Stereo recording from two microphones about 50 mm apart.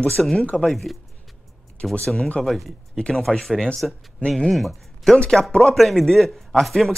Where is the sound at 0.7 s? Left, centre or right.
Centre.